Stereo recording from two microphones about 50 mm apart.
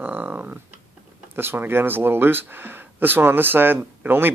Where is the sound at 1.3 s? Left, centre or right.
Right.